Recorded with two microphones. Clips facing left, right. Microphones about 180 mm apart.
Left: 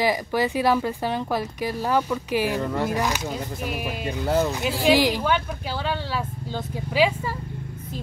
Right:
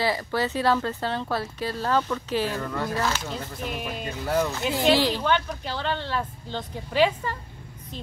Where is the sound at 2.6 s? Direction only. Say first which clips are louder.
Left 3 dB; 25° left (ahead or behind); by 4.2 s 10° left (ahead or behind).